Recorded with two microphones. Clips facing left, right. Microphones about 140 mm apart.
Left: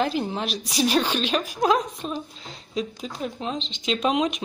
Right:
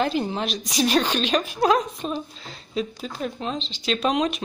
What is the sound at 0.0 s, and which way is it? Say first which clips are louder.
Speech: right 1 dB; 5° left (ahead or behind).